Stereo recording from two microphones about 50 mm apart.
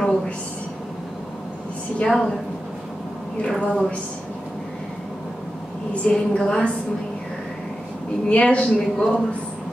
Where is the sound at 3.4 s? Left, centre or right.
Centre.